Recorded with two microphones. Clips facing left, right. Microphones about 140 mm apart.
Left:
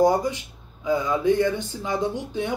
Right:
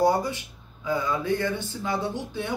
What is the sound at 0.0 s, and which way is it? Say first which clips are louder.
Speech: left 3 dB; 15° left (ahead or behind).